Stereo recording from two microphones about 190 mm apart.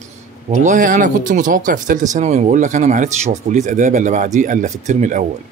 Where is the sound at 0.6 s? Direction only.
40° right (ahead or behind).